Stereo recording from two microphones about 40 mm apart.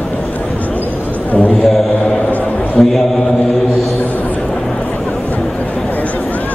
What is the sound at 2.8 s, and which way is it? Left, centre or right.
Mantra, left.